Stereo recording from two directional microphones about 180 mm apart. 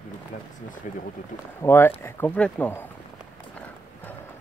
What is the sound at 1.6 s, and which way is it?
Speech, 15° left (ahead or behind).